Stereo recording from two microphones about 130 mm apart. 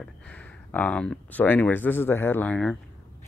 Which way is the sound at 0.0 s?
10° left (ahead or behind).